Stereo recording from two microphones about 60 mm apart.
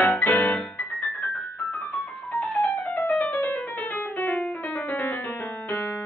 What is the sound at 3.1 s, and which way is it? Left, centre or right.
Music, left.